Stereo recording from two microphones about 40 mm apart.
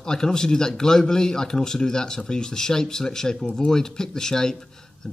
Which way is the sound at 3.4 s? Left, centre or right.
Left.